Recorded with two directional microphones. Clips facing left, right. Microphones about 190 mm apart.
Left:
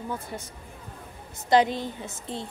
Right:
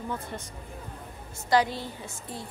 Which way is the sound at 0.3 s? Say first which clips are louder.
Left 2 dB; 10° left (ahead or behind).